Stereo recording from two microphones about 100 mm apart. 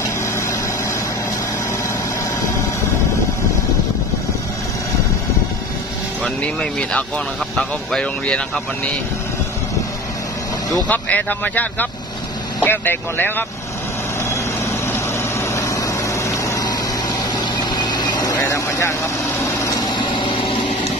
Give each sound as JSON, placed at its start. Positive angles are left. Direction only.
{"t": 6.2, "sound": "speech", "side_deg": 10}
{"t": 10.9, "sound": "speech", "side_deg": 15}
{"t": 16.3, "sound": "a sound", "side_deg": 30}
{"t": 17.6, "sound": "vehicle", "side_deg": 45}
{"t": 18.4, "sound": "speech", "side_deg": 30}
{"t": 19.9, "sound": "vehicle", "side_deg": 50}